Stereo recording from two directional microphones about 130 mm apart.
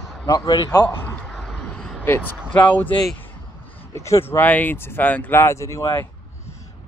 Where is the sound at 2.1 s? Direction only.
15° left (ahead or behind).